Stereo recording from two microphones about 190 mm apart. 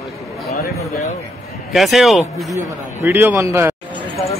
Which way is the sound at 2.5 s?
10° right (ahead or behind).